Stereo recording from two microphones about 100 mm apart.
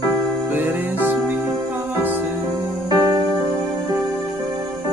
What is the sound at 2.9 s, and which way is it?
Music, 35° right (ahead or behind).